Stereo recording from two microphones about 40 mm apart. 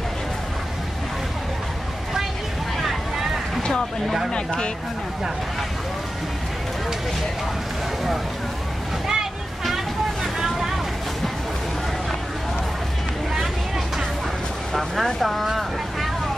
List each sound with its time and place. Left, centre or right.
2.8 s boat: centre
4.3 s speech: left
9.0 s boat: centre
14.7 s speech: centre